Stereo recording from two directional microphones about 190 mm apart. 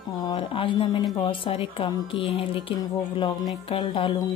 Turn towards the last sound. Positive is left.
turn(degrees=25)  # may be behind; listen again after turning